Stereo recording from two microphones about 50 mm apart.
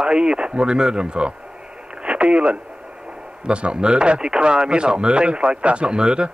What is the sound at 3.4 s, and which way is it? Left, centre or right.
Speech, centre.